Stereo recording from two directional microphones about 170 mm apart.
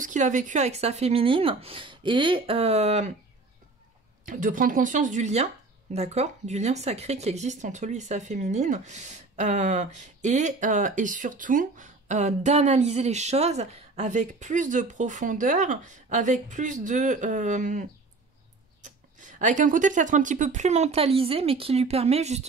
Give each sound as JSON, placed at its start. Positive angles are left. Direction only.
{"t": 0.0, "sound": "speech", "side_deg": -45}
{"t": 4.3, "sound": "speech", "side_deg": -50}